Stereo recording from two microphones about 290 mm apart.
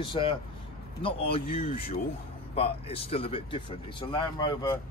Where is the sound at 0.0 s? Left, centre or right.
Centre.